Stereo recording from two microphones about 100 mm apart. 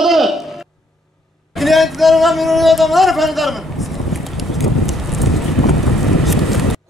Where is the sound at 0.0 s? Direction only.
Centre (ahead or behind).